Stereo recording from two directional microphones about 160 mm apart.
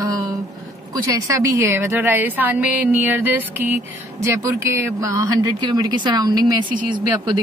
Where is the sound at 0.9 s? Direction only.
20° right (ahead or behind).